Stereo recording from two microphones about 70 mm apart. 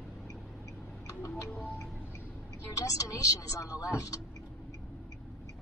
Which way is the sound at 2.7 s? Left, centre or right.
Left.